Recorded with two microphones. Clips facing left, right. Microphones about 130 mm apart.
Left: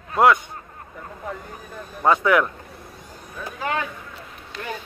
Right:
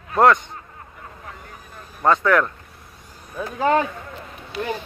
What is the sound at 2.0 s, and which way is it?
Speech, 10° left (ahead or behind).